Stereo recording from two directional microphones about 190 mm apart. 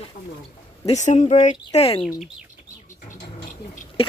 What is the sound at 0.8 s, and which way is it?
Speech, 40° left (ahead or behind).